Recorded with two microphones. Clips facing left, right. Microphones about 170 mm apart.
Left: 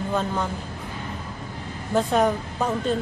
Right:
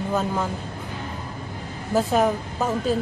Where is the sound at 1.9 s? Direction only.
5° right (ahead or behind).